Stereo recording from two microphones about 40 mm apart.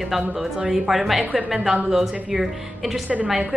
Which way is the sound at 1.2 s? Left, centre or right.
Right.